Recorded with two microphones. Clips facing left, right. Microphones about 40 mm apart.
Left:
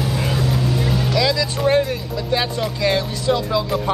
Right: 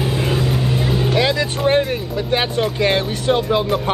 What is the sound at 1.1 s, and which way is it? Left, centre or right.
Speech, right.